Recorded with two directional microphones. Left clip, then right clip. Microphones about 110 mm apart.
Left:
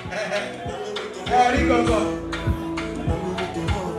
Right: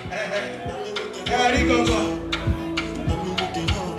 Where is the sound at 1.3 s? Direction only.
20° right (ahead or behind).